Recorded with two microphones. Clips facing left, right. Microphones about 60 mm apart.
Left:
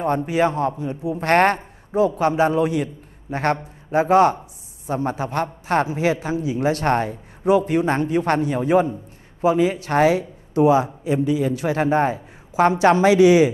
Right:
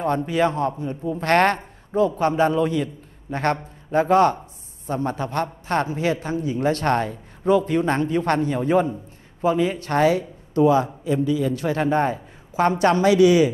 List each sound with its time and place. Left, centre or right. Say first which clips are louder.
0.0 s a man's voice: left 1 dB; centre
9.8 s a man's voice: even; centre